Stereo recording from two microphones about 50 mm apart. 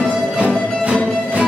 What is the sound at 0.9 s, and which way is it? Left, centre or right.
Music, centre.